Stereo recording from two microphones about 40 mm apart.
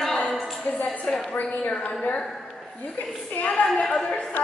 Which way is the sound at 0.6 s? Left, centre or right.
Left.